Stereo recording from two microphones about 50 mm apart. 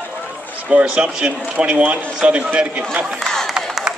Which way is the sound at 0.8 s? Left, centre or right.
Centre.